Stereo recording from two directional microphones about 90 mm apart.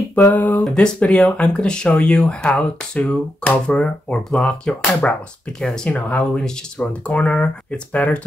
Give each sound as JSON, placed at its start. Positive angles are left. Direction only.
{"t": 0.1, "sound": "speech", "side_deg": 20}